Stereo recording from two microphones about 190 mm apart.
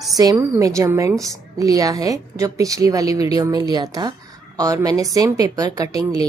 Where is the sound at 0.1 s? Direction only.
20° right (ahead or behind).